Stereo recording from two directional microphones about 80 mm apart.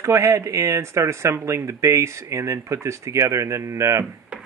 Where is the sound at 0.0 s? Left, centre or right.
Right.